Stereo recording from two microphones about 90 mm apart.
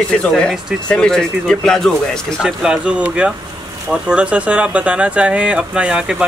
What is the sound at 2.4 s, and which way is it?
Speech, 10° right (ahead or behind).